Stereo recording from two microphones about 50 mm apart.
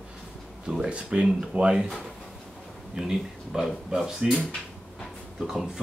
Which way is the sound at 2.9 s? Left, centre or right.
Centre.